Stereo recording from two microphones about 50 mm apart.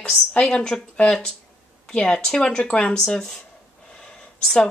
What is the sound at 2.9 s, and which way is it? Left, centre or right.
Speech, centre.